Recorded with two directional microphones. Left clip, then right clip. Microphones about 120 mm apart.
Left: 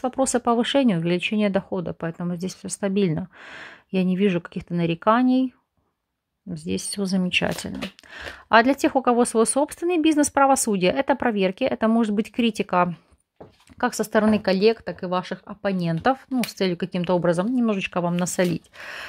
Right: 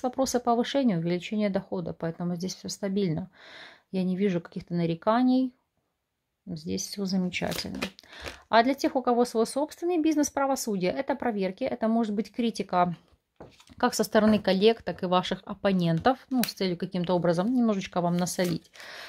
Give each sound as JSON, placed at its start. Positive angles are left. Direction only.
{"t": 0.0, "sound": "speech", "side_deg": 20}
{"t": 6.5, "sound": "speech", "side_deg": 25}
{"t": 13.7, "sound": "speech", "side_deg": 10}
{"t": 15.9, "sound": "speech", "side_deg": 15}